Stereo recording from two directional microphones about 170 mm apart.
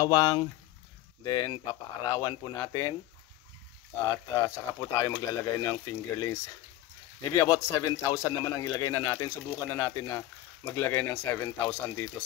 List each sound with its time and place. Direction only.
0.0 s speech: 20° left (ahead or behind)
4.1 s speech: 15° left (ahead or behind)
8.4 s speech: 30° left (ahead or behind)
8.6 s speech: 20° left (ahead or behind)